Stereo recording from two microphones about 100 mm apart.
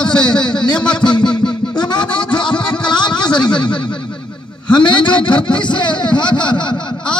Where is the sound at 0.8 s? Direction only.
50° left (ahead or behind).